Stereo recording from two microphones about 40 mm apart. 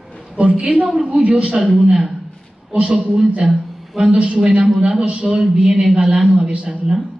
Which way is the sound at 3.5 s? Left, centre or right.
Centre.